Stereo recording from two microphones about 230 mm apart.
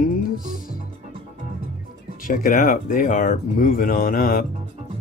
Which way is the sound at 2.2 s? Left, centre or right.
Left.